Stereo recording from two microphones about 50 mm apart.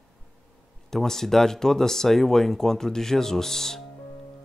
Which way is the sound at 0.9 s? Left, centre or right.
Centre.